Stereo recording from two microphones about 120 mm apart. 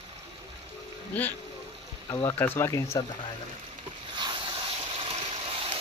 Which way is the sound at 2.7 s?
30° left (ahead or behind).